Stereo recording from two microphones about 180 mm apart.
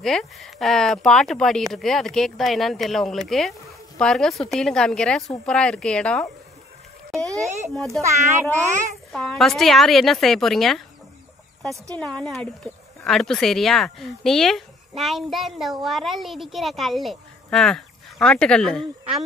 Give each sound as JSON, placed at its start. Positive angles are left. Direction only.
{"t": 0.0, "sound": "speech", "side_deg": 0}
{"t": 7.2, "sound": "a child's voice", "side_deg": -20}
{"t": 7.7, "sound": "speech", "side_deg": 0}
{"t": 8.0, "sound": "a child's voice", "side_deg": -15}
{"t": 9.1, "sound": "speech", "side_deg": 0}
{"t": 11.9, "sound": "speech", "side_deg": 5}